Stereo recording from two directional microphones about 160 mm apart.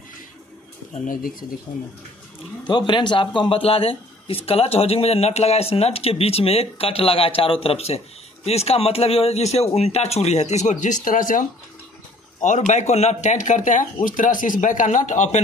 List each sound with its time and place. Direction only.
0.9 s speech: 60° left (ahead or behind)
2.9 s speech: 30° left (ahead or behind); by 15.4 s 50° left (ahead or behind)